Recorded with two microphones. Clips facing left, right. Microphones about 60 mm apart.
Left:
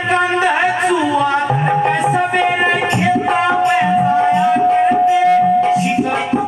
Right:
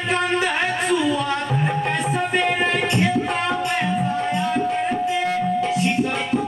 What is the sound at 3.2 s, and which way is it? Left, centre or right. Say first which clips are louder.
Music: left 9 dB; centre.